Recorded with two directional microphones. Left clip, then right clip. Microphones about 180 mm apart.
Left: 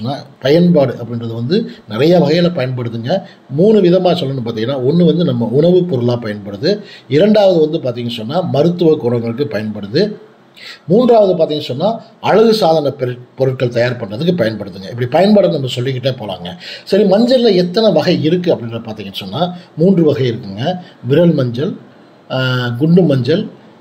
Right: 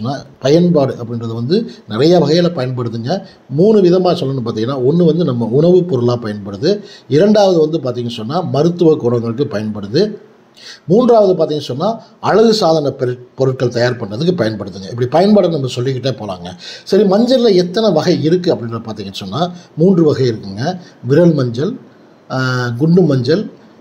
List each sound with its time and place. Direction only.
0.0 s a man's voice: 25° right (ahead or behind)